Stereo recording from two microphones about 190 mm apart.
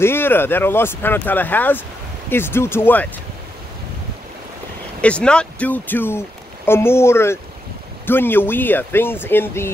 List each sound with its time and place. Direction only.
0.0 s speech: 10° left (ahead or behind)
5.0 s speech: 5° left (ahead or behind)